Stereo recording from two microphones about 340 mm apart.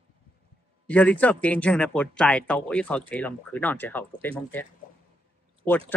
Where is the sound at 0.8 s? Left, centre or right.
Centre.